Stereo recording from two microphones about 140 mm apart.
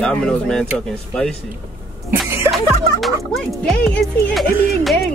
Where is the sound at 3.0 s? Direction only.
Centre (ahead or behind).